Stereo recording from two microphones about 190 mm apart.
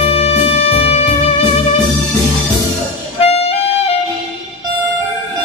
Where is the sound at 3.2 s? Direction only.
30° left (ahead or behind).